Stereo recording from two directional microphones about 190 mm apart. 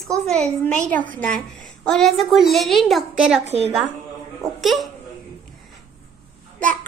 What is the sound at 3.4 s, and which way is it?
Speech, 35° right (ahead or behind).